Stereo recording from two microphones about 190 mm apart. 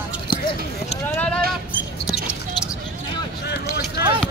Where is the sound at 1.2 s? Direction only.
5° left (ahead or behind).